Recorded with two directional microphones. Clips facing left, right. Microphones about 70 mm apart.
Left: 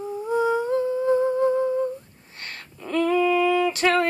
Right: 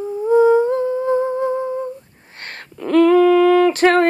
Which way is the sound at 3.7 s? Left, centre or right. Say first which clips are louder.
Right 7 dB; right.